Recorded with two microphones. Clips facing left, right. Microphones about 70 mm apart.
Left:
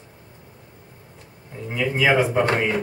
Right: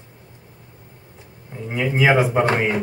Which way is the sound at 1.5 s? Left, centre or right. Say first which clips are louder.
Right 2 dB; centre.